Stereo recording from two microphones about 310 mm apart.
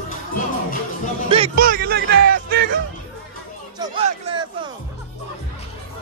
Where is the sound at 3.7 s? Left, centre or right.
Centre.